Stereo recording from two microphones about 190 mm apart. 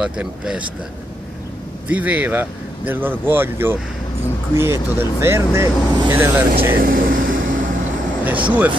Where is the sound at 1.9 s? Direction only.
10° right (ahead or behind).